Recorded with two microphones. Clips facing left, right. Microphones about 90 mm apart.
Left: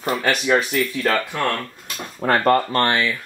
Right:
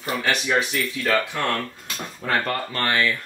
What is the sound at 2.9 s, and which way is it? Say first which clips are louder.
Speech: left 1 dB; 20° left (ahead or behind).